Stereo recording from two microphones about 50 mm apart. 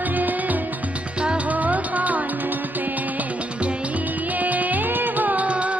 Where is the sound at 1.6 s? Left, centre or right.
Right.